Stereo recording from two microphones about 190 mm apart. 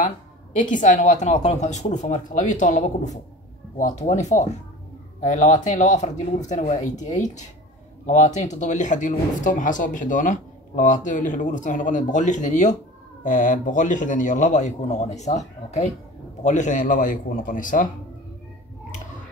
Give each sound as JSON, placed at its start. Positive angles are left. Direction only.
{"t": 0.6, "sound": "speech", "side_deg": 40}